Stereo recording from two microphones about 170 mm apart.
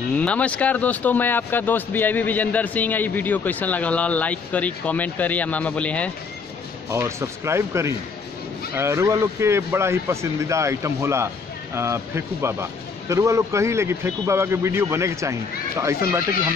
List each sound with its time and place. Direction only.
0.1 s speech: 5° left (ahead or behind)
6.9 s a man's voice: 15° right (ahead or behind)